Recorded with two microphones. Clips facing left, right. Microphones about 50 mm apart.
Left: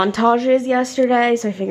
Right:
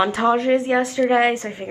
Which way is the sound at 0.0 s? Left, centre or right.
Centre.